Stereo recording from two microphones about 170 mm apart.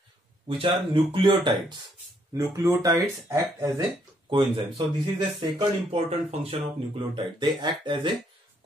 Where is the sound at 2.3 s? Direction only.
20° right (ahead or behind).